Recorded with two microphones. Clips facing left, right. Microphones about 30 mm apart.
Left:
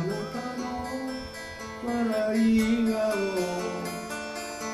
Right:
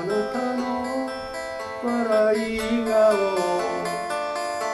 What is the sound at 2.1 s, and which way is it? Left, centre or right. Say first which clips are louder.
Music: right 7 dB; right.